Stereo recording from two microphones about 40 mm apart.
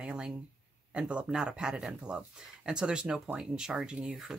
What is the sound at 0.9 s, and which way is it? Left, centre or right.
Speech, right.